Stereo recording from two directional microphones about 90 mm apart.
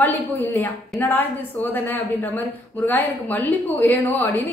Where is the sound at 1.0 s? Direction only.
20° left (ahead or behind).